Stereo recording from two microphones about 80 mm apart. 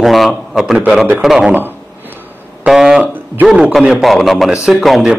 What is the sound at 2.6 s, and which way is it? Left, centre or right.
A man's voice, centre.